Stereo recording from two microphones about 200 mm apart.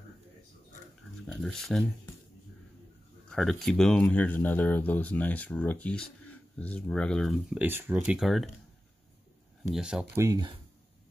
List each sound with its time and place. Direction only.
1.2 s speech: centre (ahead or behind)
3.3 s speech: centre (ahead or behind)
9.7 s speech: 5° right (ahead or behind)
10.2 s speech: 20° right (ahead or behind)